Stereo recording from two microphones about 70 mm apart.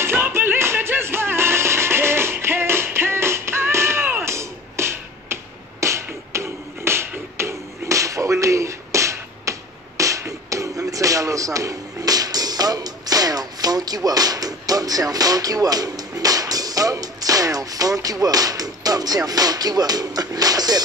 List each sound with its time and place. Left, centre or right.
0.0 s music: right